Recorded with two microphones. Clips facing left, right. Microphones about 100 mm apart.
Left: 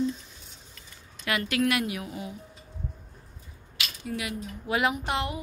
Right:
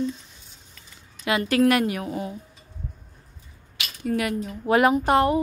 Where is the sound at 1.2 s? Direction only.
20° right (ahead or behind).